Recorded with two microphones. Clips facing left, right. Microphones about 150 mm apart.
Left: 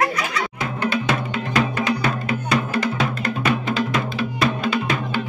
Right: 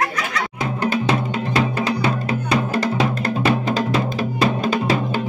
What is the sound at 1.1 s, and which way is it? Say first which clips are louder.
Music: right 2 dB; 30° right (ahead or behind).